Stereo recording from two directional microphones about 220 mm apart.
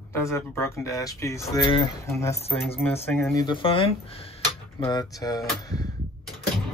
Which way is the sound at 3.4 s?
20° left (ahead or behind).